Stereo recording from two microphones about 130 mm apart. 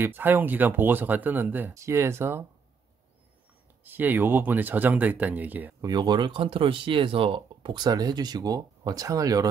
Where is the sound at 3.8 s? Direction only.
15° right (ahead or behind).